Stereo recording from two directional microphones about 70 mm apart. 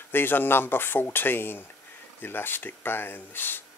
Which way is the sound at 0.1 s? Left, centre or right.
Left.